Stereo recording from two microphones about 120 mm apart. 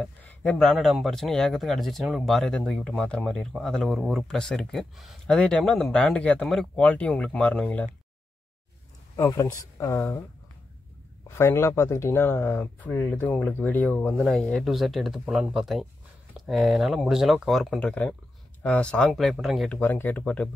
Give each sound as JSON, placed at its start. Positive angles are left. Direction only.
{"t": 0.0, "sound": "a sound", "side_deg": 10}
{"t": 0.6, "sound": "speech", "side_deg": 0}
{"t": 9.1, "sound": "speech", "side_deg": 25}
{"t": 11.2, "sound": "speech", "side_deg": 20}
{"t": 14.2, "sound": "speech", "side_deg": 5}
{"t": 19.7, "sound": "speech", "side_deg": 15}